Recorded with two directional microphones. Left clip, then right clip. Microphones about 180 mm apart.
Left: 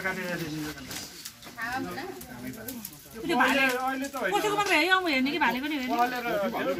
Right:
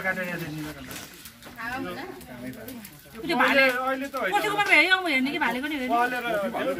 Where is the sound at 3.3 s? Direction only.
15° right (ahead or behind).